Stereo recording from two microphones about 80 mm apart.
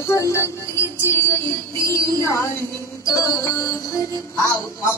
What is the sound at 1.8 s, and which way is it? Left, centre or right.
Music, left.